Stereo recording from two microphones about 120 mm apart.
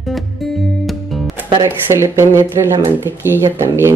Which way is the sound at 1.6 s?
20° right (ahead or behind).